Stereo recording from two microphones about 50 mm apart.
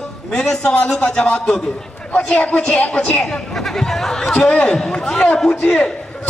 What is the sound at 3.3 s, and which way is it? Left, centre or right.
A man's voice, centre.